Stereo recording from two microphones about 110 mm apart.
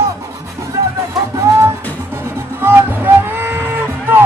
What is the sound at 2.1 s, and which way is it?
Music, 25° right (ahead or behind).